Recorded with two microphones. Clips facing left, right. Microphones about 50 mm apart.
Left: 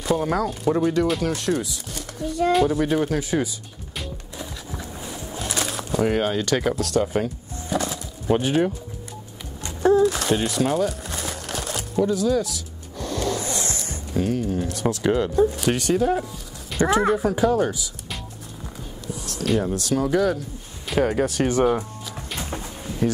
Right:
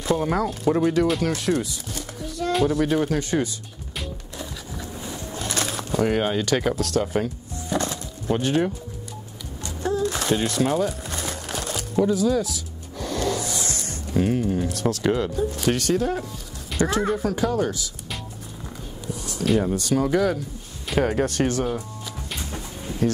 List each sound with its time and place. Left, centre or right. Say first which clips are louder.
0.0 s speech: even; centre
4.0 s music: even; centre
7.7 s bird: even; centre
9.6 s a sound: left 8 dB; left
10.0 s crumpling: left 2 dB; centre
13.4 s a sound: left 1 dB; left
14.1 s speech: right 1 dB; centre
14.6 s speech: even; centre
16.8 s speech: left 3 dB; centre
19.0 s speech: right 1 dB; centre
21.5 s speech: left 5 dB; centre
23.0 s speech: even; centre